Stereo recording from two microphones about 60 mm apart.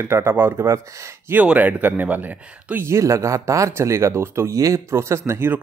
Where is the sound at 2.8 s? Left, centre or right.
Right.